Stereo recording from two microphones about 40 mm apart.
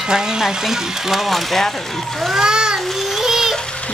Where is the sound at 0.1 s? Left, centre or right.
Centre.